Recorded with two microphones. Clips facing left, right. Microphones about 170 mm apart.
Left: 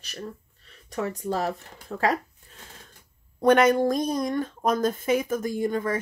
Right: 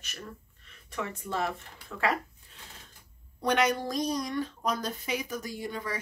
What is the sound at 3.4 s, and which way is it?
A woman's voice, 50° left (ahead or behind).